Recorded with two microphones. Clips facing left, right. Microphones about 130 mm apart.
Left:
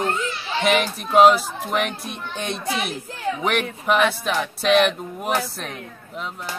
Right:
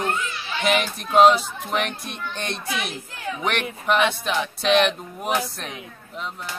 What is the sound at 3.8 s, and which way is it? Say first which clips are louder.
Speech: even; 5° left (ahead or behind).